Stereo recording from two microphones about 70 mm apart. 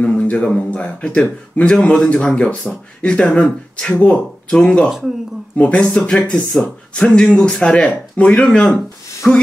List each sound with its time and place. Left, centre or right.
0.0 s speech: centre
6.5 s speech: centre